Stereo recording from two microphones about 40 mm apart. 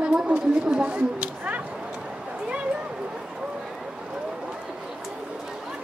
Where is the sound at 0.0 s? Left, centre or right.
Right.